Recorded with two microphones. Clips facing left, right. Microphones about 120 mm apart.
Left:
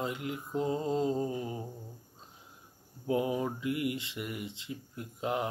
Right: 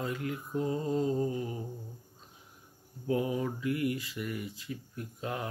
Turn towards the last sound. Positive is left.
turn(degrees=20)  # may be behind; listen again after turning